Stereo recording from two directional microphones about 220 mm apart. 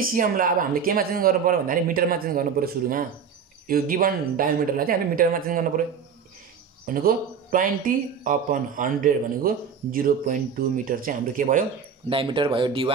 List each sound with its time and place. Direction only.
0.0 s speech: 40° right (ahead or behind)
6.9 s speech: 40° right (ahead or behind)
12.1 s speech: 25° right (ahead or behind)